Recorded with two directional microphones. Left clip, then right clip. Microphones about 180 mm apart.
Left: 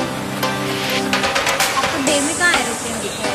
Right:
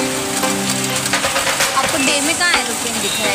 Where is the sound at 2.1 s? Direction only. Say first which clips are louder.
Even; 30° right (ahead or behind).